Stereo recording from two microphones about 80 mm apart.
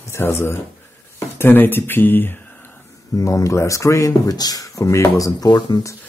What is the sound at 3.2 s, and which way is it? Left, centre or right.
Speech, left.